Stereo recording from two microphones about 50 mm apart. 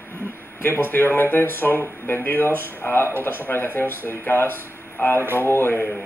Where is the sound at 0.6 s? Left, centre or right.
Left.